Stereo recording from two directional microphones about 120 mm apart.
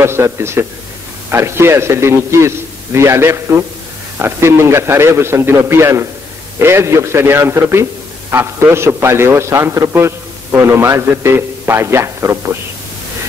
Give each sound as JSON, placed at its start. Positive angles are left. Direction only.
{"t": 0.0, "sound": "a man's voice", "side_deg": -20}